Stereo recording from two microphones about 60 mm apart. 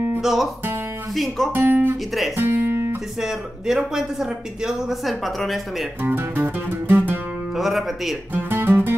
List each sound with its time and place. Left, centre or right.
0.2 s guitar: centre
1.1 s speech: centre
1.5 s speech: right
2.3 s music: right
3.2 s speech: centre
6.0 s music: right
7.5 s speech: centre
8.4 s guitar: right